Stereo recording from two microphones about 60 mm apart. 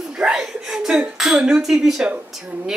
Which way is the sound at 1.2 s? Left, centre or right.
Centre.